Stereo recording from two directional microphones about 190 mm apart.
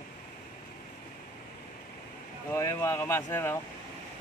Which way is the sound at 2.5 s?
15° left (ahead or behind).